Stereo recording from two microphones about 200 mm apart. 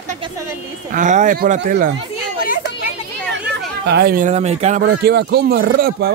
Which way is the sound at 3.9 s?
50° right (ahead or behind).